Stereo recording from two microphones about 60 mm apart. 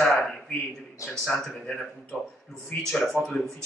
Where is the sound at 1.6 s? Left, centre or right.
Centre.